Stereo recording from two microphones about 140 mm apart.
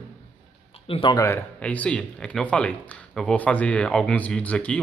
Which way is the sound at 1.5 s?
10° left (ahead or behind).